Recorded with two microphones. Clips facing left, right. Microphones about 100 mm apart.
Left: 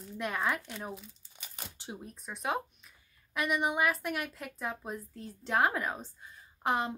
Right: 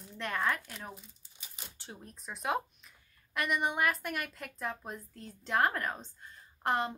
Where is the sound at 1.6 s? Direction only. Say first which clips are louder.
Left 4 dB; 55° left (ahead or behind).